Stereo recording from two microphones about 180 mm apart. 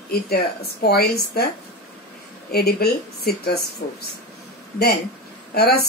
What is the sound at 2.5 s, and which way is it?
Speech, 60° left (ahead or behind).